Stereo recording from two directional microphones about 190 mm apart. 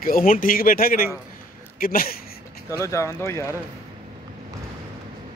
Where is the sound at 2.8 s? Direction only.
15° left (ahead or behind).